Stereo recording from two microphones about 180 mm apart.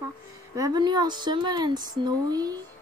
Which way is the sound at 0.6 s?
20° right (ahead or behind).